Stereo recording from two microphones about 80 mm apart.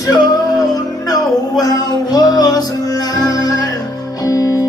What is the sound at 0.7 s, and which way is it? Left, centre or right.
Music, left.